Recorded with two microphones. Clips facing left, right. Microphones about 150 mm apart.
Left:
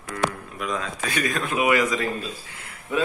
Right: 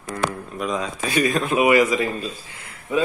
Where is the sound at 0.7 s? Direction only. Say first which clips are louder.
Right 4 dB; 20° right (ahead or behind).